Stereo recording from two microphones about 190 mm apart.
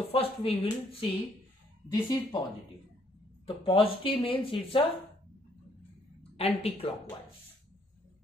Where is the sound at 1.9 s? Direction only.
20° left (ahead or behind).